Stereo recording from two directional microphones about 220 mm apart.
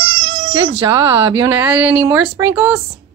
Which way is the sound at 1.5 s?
10° right (ahead or behind).